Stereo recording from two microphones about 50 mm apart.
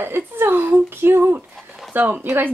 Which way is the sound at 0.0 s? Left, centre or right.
Right.